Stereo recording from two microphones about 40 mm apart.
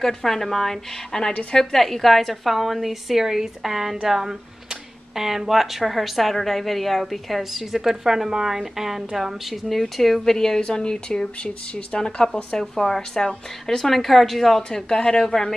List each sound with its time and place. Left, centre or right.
0.0 s a woman's voice: centre; by 12.3 s left
12.5 s a woman's voice: centre
14.9 s speech: centre